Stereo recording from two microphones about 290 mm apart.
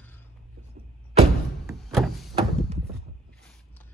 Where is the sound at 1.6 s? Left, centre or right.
Centre.